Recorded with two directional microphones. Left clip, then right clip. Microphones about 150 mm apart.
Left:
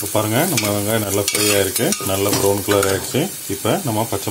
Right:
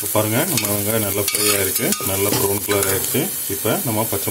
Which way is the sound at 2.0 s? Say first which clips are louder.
Left 3 dB; 10° left (ahead or behind).